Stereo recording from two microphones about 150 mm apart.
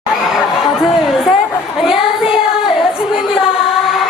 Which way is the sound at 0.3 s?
5° right (ahead or behind).